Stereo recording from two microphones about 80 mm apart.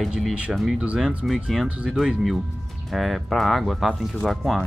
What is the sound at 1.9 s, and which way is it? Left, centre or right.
Speech, centre.